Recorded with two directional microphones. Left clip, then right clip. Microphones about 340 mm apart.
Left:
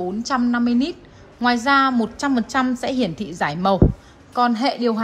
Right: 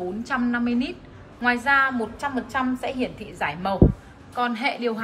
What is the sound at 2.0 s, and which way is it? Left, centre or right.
A woman's voice, left.